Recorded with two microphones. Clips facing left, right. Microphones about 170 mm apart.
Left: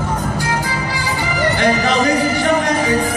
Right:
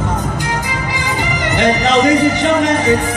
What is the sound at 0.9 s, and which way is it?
Music, 20° right (ahead or behind).